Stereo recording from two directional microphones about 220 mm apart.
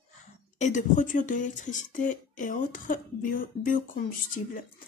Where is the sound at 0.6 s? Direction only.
35° left (ahead or behind).